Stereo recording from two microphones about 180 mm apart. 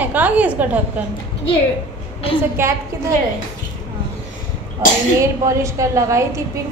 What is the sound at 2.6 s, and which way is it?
Speech, 15° right (ahead or behind).